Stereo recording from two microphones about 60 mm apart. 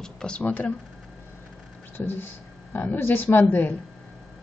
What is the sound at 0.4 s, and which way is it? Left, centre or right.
Speech, left.